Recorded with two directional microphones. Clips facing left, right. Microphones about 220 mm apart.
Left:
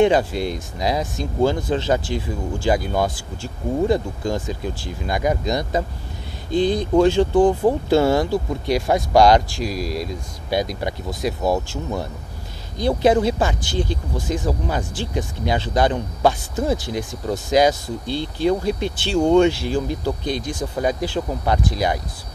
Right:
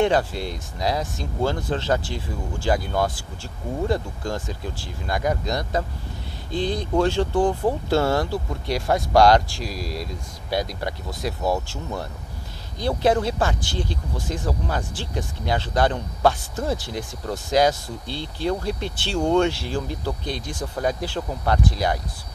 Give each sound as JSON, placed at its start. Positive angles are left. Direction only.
{"t": 0.0, "sound": "speech", "side_deg": 15}